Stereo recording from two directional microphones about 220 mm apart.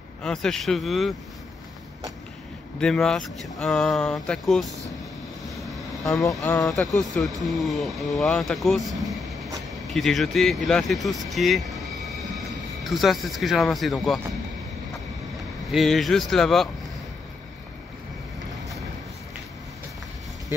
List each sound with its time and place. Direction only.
0.2 s speech: 5° left (ahead or behind)
2.8 s speech: 5° left (ahead or behind)
6.4 s speech: 15° left (ahead or behind)
7.0 s speech: centre (ahead or behind)
15.7 s speech: centre (ahead or behind)